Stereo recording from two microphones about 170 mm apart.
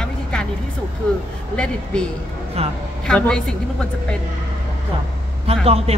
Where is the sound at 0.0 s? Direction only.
5° left (ahead or behind).